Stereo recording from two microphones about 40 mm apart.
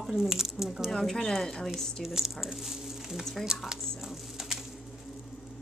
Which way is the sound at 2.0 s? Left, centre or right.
Centre.